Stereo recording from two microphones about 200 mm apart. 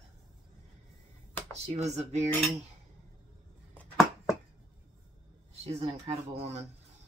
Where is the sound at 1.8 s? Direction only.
35° right (ahead or behind).